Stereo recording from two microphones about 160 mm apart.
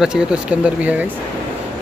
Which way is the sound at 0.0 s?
5° right (ahead or behind).